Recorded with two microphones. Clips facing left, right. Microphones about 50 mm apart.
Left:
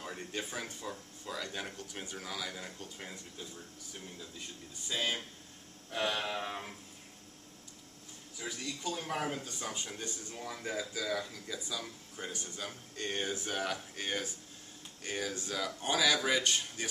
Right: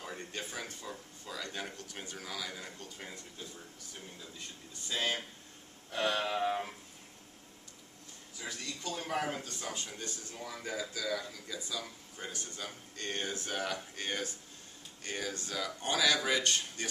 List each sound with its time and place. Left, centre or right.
0.2 s speech: centre
4.8 s speech: centre
8.4 s speech: centre
10.6 s speech: centre
12.3 s speech: centre
12.5 s speech: centre